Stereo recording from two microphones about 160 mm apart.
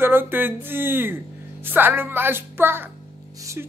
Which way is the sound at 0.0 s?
15° right (ahead or behind).